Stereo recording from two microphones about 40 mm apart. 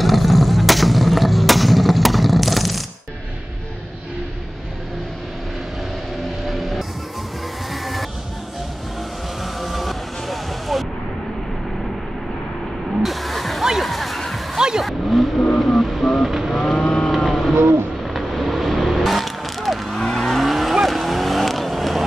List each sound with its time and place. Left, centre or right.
0.0 s a sound: centre
6.4 s music: centre
9.4 s vehicle: centre
13.0 s a sound: centre
13.8 s music: centre
14.8 s vehicle: centre
16.3 s vehicle: centre
16.7 s cattle: centre
17.1 s vehicle: centre